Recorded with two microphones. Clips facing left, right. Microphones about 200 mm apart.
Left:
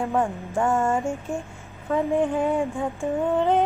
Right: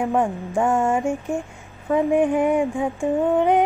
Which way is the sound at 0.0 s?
15° right (ahead or behind).